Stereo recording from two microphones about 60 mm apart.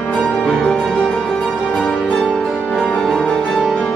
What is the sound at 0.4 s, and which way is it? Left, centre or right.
Music, centre.